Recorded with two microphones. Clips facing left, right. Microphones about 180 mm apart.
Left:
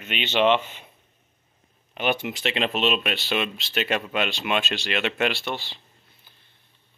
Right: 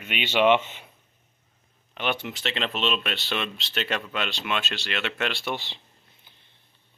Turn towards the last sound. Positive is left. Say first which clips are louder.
# even
turn(degrees=-15)  # may be behind; listen again after turning